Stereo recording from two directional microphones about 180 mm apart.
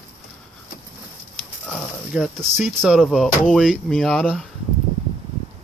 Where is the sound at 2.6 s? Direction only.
Centre (ahead or behind).